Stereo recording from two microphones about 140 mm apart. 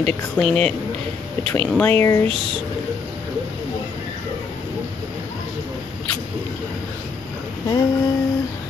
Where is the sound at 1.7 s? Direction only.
15° left (ahead or behind).